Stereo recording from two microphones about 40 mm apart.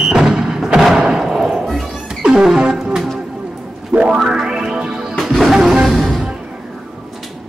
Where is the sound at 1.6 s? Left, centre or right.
Centre.